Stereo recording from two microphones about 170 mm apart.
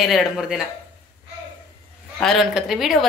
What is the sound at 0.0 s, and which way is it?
Speech, centre (ahead or behind).